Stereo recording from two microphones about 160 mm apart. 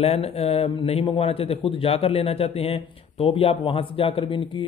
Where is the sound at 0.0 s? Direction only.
40° left (ahead or behind).